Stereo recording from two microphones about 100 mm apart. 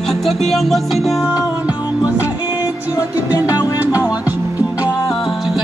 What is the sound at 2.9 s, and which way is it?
Music, 35° left (ahead or behind).